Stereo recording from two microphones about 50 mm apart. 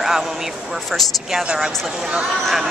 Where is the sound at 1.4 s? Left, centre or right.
Centre.